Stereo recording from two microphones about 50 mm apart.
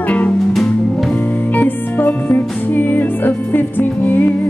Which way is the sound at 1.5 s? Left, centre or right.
Left.